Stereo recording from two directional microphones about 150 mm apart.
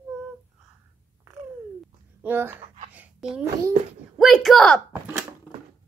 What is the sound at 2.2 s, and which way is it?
Speech, 15° right (ahead or behind).